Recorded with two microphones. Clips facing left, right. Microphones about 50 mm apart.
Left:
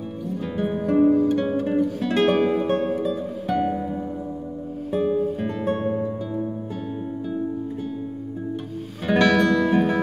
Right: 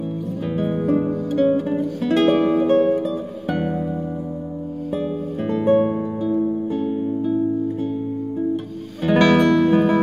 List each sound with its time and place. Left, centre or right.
0.5 s music: centre
4.9 s music: centre
5.5 s music: centre
9.0 s music: centre